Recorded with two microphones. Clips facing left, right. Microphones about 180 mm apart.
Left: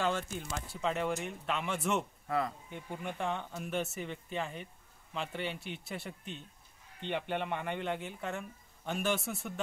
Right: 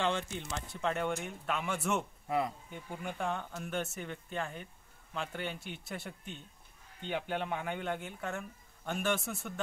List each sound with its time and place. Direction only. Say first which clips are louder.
0.0 s a sound: even; 5° left (ahead or behind)
0.4 s speech: even; 5° left (ahead or behind)
2.2 s speech: right 2 dB; 15° right (ahead or behind)
2.7 s speech: left 1 dB; centre (ahead or behind)